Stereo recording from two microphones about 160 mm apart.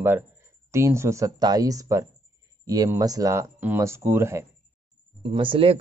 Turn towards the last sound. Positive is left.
turn(degrees=-35)  # may be behind; listen again after turning